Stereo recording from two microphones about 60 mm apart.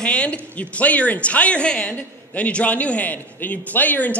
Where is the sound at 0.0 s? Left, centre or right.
Centre.